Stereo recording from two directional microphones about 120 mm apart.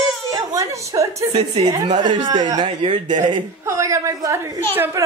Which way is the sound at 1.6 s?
30° right (ahead or behind).